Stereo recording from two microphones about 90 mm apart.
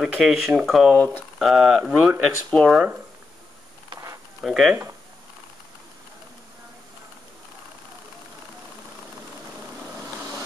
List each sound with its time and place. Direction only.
0.0 s speech: 5° right (ahead or behind)
0.9 s speech: 15° left (ahead or behind)
1.4 s speech: 5° right (ahead or behind)
2.5 s speech: 5° left (ahead or behind)
3.9 s a sound: 35° right (ahead or behind)
4.4 s speech: 5° right (ahead or behind)